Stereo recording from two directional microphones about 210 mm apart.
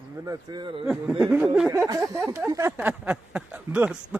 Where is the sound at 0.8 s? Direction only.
5° right (ahead or behind).